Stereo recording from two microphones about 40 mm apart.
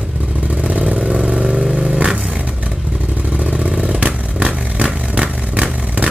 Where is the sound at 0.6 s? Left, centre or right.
Right.